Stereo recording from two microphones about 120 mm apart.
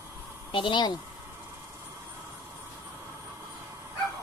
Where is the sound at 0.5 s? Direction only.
40° left (ahead or behind).